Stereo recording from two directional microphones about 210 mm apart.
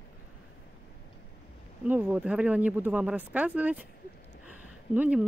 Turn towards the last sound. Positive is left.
turn(degrees=-5)  # may be behind; listen again after turning